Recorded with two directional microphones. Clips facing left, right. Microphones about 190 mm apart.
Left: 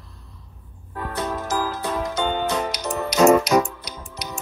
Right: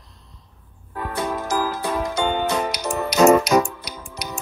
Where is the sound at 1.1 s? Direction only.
10° right (ahead or behind).